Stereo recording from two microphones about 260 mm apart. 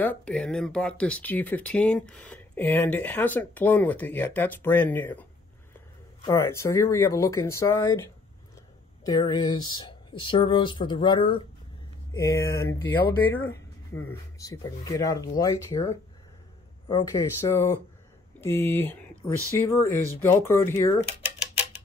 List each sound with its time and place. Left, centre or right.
0.0 s speech: centre
6.2 s speech: centre